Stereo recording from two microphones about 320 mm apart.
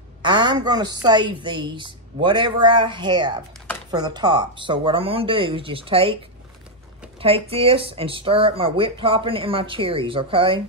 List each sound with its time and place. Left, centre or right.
0.2 s speech: centre
7.2 s speech: centre